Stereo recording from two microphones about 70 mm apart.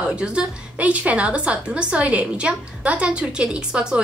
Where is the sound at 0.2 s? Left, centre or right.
Centre.